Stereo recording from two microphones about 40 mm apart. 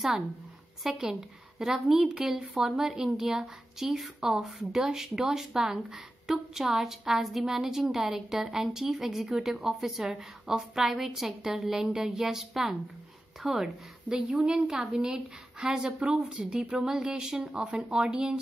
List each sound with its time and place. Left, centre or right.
0.8 s a woman's voice: centre
14.2 s a woman's voice: centre